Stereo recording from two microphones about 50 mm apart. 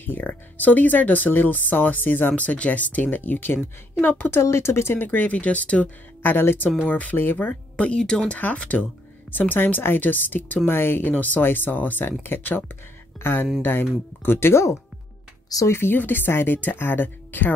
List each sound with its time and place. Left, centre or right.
0.0 s speech: left
2.3 s speech: left
4.3 s speech: left
4.9 s speech: left
6.2 s speech: left
6.8 s speech: left
7.7 s speech: left
8.3 s speech: left
15.8 s speech: left